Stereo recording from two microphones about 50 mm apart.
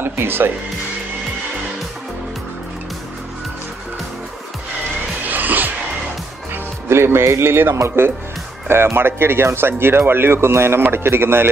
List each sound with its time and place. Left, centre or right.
0.0 s music: right
5.3 s music: right
6.5 s speech: right